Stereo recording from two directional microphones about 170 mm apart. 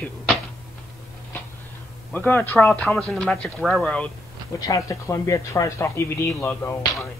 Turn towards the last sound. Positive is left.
turn(degrees=10)  # may be behind; listen again after turning